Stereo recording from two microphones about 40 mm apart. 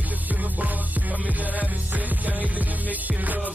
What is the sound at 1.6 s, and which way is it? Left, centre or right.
Music, right.